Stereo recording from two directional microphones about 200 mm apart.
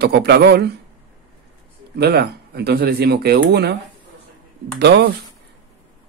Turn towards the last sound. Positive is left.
turn(degrees=-55)  # may be behind; listen again after turning